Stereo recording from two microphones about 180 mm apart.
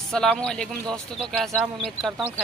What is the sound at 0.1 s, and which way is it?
Speech, 5° left (ahead or behind).